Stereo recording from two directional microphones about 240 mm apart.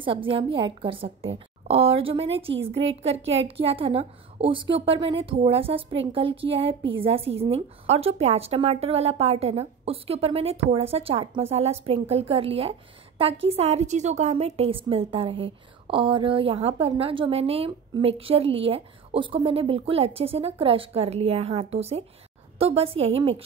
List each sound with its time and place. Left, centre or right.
0.0 s a woman's voice: right